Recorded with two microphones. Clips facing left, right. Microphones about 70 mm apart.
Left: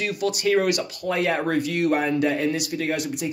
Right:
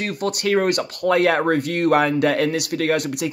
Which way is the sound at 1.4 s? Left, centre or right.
Right.